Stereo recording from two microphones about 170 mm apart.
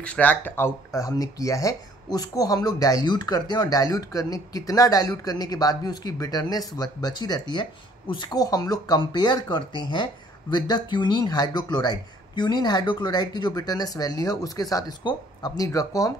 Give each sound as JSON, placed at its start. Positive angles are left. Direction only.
{"t": 0.0, "sound": "speech", "side_deg": 10}